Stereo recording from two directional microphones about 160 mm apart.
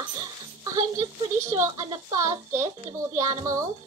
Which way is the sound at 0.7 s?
20° right (ahead or behind).